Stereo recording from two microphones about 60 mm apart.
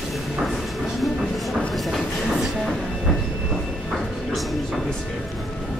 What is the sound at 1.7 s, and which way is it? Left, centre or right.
Train, centre.